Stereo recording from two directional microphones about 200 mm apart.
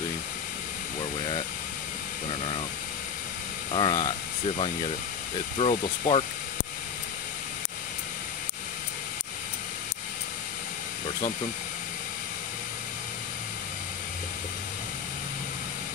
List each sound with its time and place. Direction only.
3.7 s speech: 25° left (ahead or behind)
5.6 s speech: 30° left (ahead or behind)